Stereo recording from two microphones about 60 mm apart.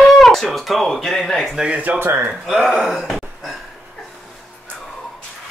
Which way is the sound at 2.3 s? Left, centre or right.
Centre.